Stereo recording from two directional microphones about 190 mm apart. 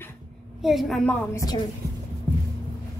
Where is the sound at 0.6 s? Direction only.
Centre (ahead or behind).